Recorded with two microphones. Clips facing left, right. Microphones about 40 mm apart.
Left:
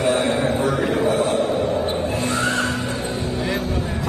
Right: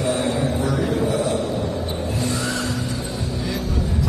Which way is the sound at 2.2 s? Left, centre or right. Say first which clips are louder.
Left 3 dB; left.